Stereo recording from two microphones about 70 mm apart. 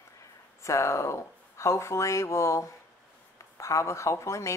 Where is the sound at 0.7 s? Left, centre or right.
Left.